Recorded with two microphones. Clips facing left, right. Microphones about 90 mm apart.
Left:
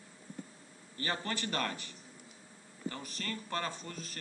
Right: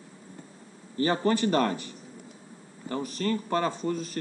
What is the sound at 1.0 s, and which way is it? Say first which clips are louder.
A man's voice: right 13 dB; 30° right (ahead or behind).